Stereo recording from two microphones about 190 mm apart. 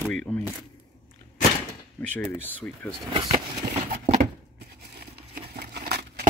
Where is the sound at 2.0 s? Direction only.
10° left (ahead or behind).